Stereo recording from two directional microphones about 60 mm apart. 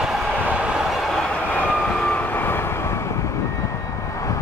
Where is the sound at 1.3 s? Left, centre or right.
Left.